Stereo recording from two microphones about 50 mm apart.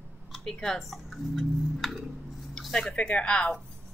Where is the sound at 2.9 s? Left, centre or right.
Left.